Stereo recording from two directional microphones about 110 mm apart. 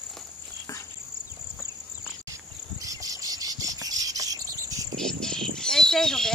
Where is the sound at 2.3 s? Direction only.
30° right (ahead or behind).